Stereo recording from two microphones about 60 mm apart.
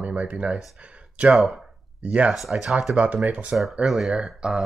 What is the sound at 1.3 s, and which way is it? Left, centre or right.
Speech, centre.